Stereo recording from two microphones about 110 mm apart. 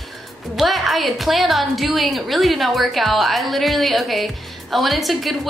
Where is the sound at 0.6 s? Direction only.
Centre (ahead or behind).